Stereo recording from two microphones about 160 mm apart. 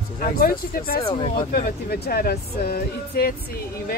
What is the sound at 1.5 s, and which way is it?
Speech, 75° left (ahead or behind).